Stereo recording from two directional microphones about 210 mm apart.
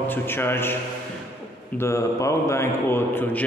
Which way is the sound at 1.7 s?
15° left (ahead or behind).